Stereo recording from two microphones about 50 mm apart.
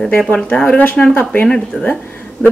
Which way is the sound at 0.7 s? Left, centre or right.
Left.